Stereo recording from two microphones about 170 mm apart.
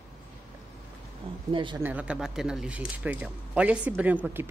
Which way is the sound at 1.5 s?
30° right (ahead or behind).